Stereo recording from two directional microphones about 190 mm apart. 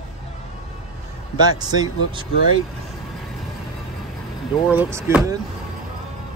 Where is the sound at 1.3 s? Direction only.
20° right (ahead or behind).